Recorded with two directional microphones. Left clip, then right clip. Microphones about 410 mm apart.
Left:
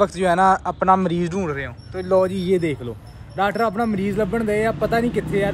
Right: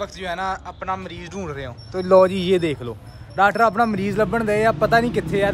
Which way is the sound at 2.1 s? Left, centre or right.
Centre.